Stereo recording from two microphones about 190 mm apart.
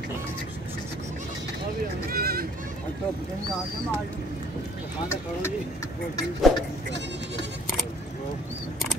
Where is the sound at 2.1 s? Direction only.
50° right (ahead or behind).